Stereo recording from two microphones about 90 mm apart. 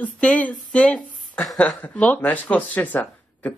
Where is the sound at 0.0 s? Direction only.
15° left (ahead or behind).